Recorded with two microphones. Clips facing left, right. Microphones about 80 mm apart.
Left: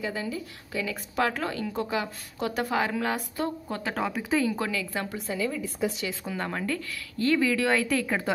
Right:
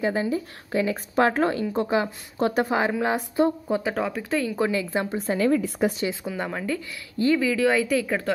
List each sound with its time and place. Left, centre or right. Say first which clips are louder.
0.0 s a woman's voice: right 7 dB; right
2.7 s a woman's voice: right 4 dB; right
3.6 s speech: right 5 dB; centre
4.6 s a woman's voice: right 6 dB; right
5.2 s speech: right 11 dB; right
6.2 s speech: right 2 dB; centre